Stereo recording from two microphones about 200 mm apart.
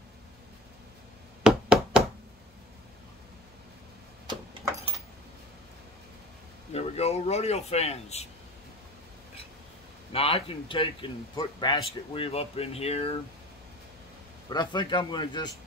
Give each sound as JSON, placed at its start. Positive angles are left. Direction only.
{"t": 1.4, "sound": "knock", "side_deg": -5}
{"t": 6.7, "sound": "a man's voice", "side_deg": 30}
{"t": 10.1, "sound": "speech", "side_deg": 30}
{"t": 14.5, "sound": "speech", "side_deg": 20}